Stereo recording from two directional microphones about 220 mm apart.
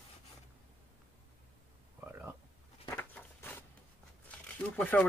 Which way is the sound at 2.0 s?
10° right (ahead or behind).